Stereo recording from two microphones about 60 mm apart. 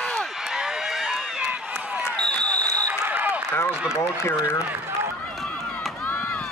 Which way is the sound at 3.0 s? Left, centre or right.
Right.